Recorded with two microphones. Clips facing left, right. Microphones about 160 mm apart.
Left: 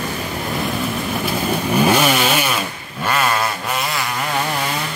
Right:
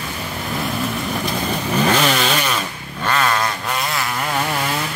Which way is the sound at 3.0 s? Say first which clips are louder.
Even; 10° left (ahead or behind).